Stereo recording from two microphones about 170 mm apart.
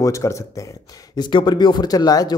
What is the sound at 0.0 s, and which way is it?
A man's voice, 20° left (ahead or behind).